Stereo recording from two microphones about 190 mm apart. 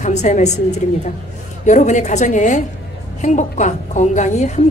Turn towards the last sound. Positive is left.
turn(degrees=40)  # may be behind; listen again after turning